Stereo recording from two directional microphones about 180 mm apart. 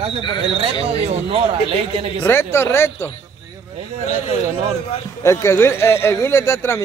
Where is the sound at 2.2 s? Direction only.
15° left (ahead or behind).